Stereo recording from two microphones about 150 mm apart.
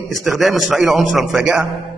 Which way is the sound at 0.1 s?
Centre (ahead or behind).